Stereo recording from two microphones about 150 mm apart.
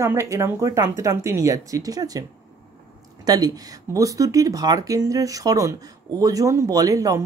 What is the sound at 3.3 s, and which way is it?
Speech, 25° right (ahead or behind).